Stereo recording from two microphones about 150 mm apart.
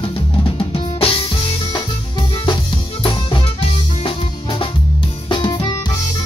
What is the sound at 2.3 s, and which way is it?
Music, 35° left (ahead or behind).